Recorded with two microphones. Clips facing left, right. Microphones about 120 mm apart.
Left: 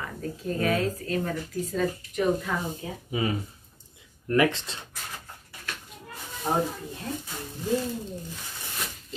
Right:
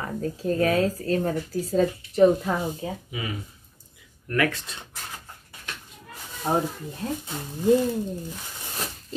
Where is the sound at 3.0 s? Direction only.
35° left (ahead or behind).